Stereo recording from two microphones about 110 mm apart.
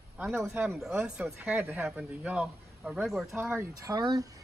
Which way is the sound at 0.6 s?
20° right (ahead or behind).